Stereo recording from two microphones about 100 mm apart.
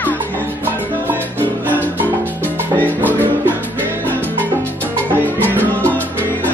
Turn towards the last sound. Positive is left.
turn(degrees=-20)  # may be behind; listen again after turning